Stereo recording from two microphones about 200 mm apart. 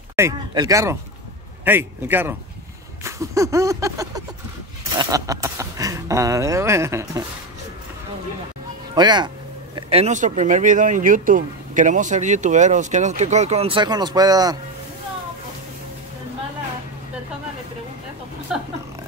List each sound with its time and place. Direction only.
0.1 s speech: 15° right (ahead or behind)
3.0 s a sound: 15° right (ahead or behind)
4.9 s speech: 15° right (ahead or behind)
8.9 s speech: 20° right (ahead or behind)